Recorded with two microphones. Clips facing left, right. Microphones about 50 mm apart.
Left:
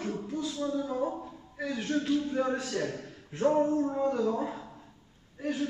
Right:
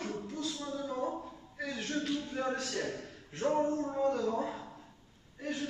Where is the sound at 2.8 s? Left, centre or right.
Centre.